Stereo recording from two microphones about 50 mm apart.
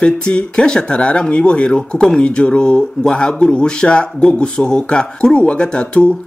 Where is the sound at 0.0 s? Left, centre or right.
Centre.